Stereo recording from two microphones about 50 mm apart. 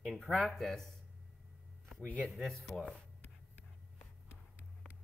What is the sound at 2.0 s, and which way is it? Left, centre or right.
Speech, left.